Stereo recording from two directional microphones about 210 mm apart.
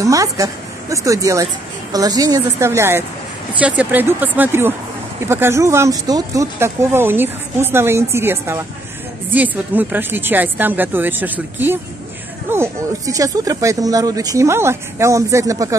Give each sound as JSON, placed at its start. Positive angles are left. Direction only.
{"t": 0.0, "sound": "speech", "side_deg": -15}